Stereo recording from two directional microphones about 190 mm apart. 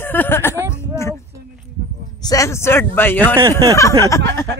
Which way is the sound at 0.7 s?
15° left (ahead or behind).